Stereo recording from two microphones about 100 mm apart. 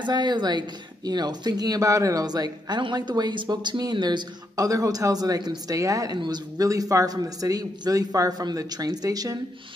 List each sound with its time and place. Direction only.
0.0 s speech: 45° right (ahead or behind)
4.6 s a man's voice: 35° right (ahead or behind)